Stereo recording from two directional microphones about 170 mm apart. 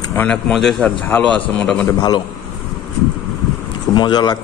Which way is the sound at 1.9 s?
25° left (ahead or behind).